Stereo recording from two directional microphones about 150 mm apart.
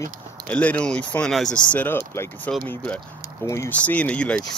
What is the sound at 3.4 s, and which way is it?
Speech, 15° left (ahead or behind).